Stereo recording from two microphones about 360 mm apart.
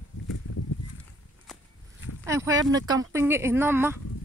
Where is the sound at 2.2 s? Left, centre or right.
Centre.